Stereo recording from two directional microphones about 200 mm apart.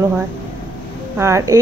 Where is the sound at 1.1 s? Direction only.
15° right (ahead or behind).